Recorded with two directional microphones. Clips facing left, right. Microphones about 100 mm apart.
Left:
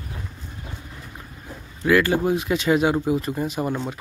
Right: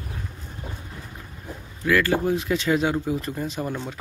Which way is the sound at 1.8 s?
20° left (ahead or behind).